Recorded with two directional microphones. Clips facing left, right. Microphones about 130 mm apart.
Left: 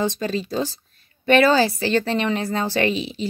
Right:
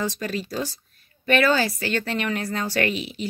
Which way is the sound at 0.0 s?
25° left (ahead or behind).